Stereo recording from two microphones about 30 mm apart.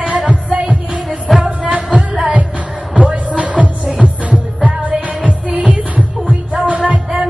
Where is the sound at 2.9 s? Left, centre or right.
Right.